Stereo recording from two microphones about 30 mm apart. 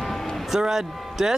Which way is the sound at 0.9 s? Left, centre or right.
Centre.